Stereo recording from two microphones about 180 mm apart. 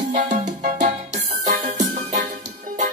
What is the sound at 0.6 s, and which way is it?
Music, 40° right (ahead or behind).